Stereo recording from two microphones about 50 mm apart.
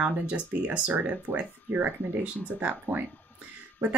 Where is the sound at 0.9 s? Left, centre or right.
Right.